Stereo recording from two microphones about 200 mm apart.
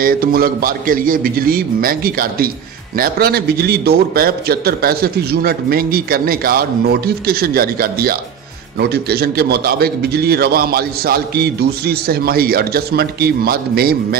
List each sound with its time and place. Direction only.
0.0 s a man's voice: 45° right (ahead or behind)